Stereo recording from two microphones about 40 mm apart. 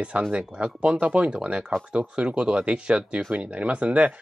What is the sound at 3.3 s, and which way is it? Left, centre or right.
Speech, right.